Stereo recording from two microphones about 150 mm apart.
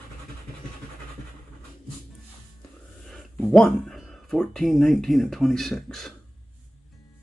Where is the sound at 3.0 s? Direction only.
Centre (ahead or behind).